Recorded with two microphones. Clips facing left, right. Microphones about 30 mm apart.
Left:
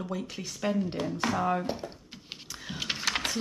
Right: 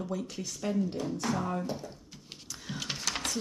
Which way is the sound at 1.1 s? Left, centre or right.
Left.